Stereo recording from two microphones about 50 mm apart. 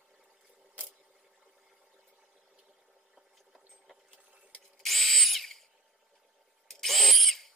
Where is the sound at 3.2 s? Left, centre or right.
Centre.